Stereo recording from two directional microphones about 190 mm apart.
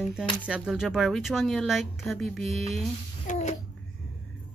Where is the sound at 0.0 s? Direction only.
5° right (ahead or behind).